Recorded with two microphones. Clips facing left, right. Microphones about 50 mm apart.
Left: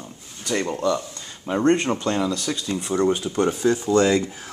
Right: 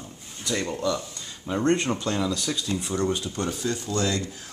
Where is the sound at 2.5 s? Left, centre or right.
Centre.